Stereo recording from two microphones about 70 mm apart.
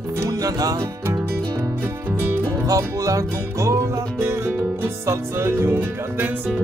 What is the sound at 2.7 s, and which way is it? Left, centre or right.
Music, right.